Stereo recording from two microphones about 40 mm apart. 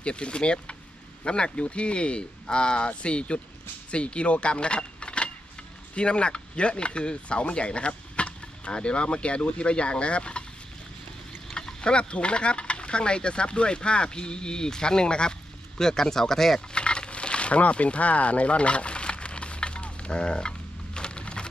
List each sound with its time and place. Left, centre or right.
0.0 s speech: left
11.5 s speech: left
16.7 s a sound: left